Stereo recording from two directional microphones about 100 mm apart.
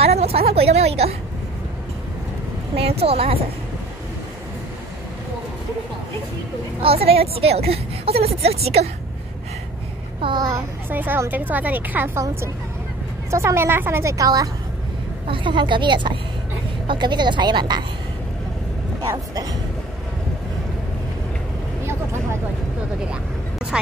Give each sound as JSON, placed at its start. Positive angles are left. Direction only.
{"t": 0.0, "sound": "a woman's voice", "side_deg": -90}
{"t": 2.7, "sound": "a woman's voice", "side_deg": -80}
{"t": 6.8, "sound": "a woman's voice", "side_deg": -75}
{"t": 10.2, "sound": "a woman's voice", "side_deg": -45}
{"t": 10.9, "sound": "speech", "side_deg": -20}
{"t": 13.3, "sound": "speech", "side_deg": -30}
{"t": 14.1, "sound": "a woman's voice", "side_deg": -35}
{"t": 15.2, "sound": "a woman's voice", "side_deg": -55}
{"t": 21.8, "sound": "vehicle", "side_deg": -25}
{"t": 23.7, "sound": "speech", "side_deg": -10}